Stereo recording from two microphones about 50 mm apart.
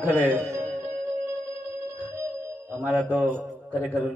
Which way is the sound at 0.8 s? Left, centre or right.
Right.